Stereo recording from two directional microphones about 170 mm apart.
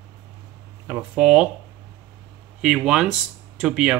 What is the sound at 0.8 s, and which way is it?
Speech, 10° right (ahead or behind).